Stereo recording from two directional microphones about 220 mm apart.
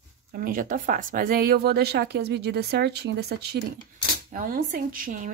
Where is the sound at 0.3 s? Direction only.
40° right (ahead or behind).